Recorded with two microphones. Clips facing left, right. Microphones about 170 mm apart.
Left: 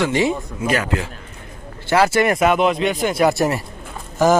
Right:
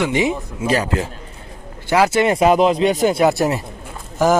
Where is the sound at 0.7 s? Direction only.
35° right (ahead or behind).